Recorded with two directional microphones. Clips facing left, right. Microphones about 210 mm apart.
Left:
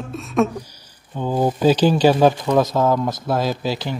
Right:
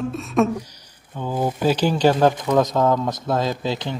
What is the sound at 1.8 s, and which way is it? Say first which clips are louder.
Humming: left 1 dB; 10° left (ahead or behind).